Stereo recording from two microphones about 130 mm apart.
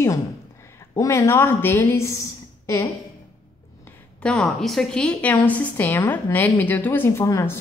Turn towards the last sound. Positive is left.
turn(degrees=20)  # may be behind; listen again after turning